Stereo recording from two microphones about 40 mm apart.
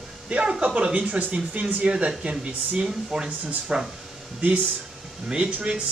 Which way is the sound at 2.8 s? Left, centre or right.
Centre.